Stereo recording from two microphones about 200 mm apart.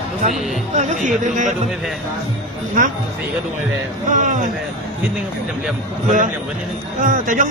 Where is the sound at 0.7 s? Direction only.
35° right (ahead or behind).